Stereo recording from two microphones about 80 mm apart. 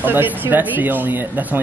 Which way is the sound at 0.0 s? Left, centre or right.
Right.